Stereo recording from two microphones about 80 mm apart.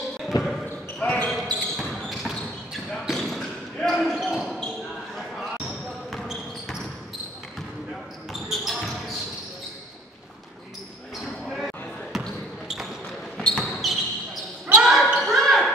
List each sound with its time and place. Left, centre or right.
0.3 s basketball bounce: left
0.9 s basketball bounce: centre
1.2 s basketball bounce: centre
5.7 s basketball bounce: centre
8.3 s basketball bounce: centre
11.5 s basketball bounce: centre
13.4 s basketball bounce: centre
13.7 s basketball bounce: centre